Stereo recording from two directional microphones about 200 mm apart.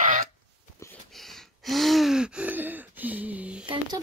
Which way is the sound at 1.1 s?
Centre (ahead or behind).